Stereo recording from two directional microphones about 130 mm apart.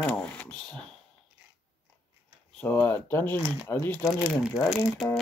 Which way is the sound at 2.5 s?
15° left (ahead or behind).